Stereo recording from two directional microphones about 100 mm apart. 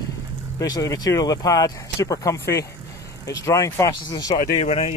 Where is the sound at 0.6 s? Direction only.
35° left (ahead or behind).